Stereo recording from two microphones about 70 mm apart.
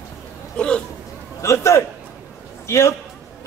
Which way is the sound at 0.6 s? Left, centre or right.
Centre.